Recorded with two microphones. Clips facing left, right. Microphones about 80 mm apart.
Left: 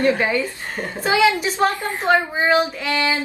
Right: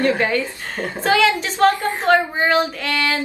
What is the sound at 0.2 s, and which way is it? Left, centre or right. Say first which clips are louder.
A woman's voice: right 1 dB; centre.